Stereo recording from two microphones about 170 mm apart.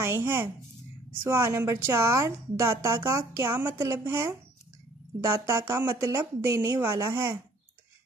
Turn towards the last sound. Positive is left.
turn(degrees=-15)  # may be behind; listen again after turning